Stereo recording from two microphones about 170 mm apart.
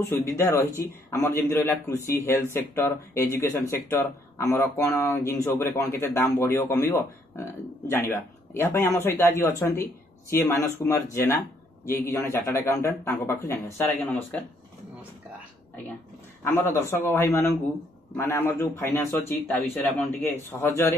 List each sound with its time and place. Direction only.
0.2 s speech: 15° left (ahead or behind)
16.4 s a man's voice: 15° left (ahead or behind)